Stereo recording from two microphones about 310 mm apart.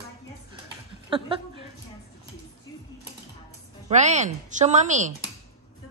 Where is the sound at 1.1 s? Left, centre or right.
Centre.